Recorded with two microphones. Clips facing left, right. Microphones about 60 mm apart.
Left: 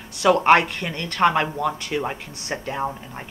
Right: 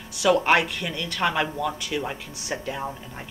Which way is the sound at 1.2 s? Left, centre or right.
Left.